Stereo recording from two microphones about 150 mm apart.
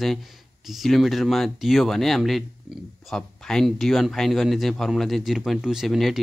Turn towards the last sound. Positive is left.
turn(degrees=0)  # may be behind; listen again after turning